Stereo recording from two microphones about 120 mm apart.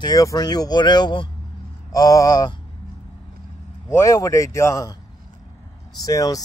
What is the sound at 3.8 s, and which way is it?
Speech, 25° left (ahead or behind).